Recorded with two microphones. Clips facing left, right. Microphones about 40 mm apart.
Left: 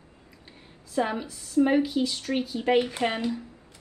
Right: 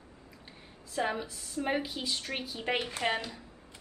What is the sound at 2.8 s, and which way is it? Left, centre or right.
Speech, left.